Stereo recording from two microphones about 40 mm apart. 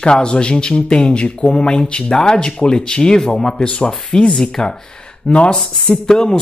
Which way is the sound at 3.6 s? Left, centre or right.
Left.